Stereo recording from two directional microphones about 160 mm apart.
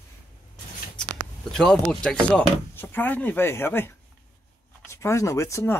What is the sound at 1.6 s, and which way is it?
Speech, 5° left (ahead or behind).